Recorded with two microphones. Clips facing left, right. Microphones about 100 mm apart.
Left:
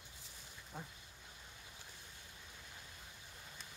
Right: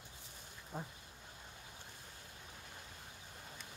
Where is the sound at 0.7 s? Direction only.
35° right (ahead or behind).